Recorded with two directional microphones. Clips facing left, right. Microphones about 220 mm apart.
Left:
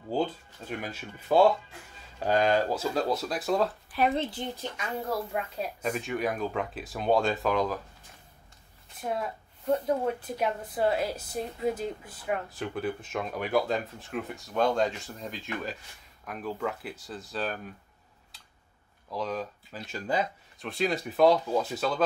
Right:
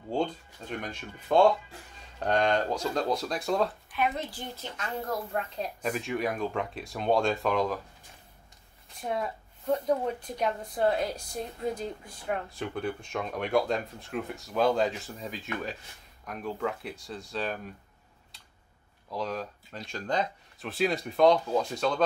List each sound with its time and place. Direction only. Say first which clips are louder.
0.1 s speech: left 1 dB; 5° left (ahead or behind)
3.9 s a woman's voice: left 4 dB; 30° left (ahead or behind); by 7.8 s centre (ahead or behind)
9.1 s speech: right 1 dB; centre (ahead or behind)
19.0 s speech: left 1 dB; centre (ahead or behind)